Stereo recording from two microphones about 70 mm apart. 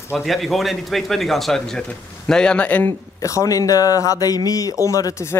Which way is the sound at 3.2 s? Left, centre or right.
Left.